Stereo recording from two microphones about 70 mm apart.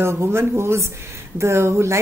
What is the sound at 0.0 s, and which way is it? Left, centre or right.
Speech, right.